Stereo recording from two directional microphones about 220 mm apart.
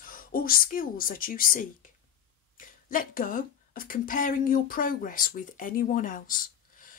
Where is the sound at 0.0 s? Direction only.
40° left (ahead or behind).